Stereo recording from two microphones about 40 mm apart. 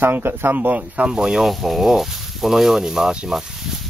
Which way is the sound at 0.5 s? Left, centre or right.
Right.